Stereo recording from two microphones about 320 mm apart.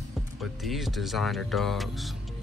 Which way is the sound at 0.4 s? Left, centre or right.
Centre.